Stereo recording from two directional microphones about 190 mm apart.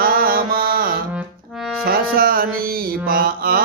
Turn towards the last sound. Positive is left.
turn(degrees=-50)  # may be behind; listen again after turning